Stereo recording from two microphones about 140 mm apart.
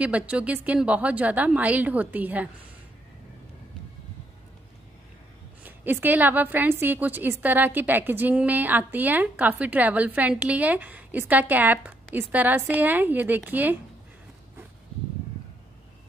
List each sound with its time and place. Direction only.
0.0 s a woman's voice: 10° right (ahead or behind)
5.6 s a woman's voice: 15° right (ahead or behind)